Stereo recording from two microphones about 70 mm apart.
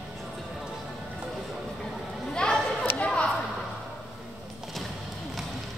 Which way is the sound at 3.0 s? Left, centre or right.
Centre.